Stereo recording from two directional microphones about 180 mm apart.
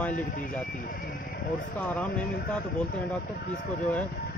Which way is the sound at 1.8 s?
10° left (ahead or behind).